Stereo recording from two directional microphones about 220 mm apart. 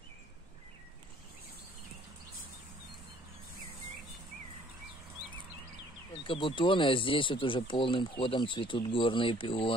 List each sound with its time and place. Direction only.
6.2 s speech: 25° left (ahead or behind)